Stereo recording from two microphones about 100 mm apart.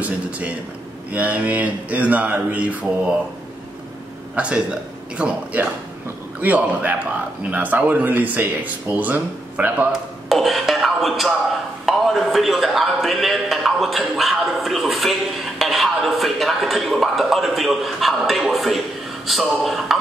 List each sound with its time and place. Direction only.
1.1 s speech: 15° right (ahead or behind)
4.4 s speech: 10° right (ahead or behind)
10.3 s a man's voice: centre (ahead or behind)
15.6 s a sound: centre (ahead or behind)
19.2 s a man's voice: centre (ahead or behind)